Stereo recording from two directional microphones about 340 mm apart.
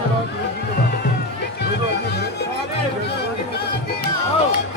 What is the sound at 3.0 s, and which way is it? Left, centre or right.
Chatter, left.